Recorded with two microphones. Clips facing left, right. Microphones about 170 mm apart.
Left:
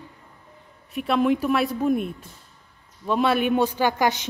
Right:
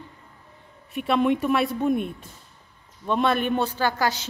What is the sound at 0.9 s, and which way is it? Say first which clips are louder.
A woman's voice: left 1 dB; centre (ahead or behind).